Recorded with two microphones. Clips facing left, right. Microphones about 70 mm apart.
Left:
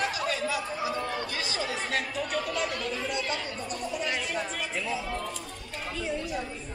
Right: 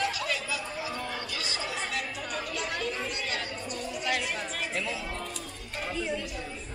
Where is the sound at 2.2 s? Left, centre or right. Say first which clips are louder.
Left 4 dB; left.